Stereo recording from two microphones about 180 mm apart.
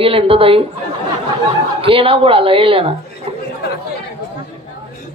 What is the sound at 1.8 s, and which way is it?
Speech, 30° right (ahead or behind).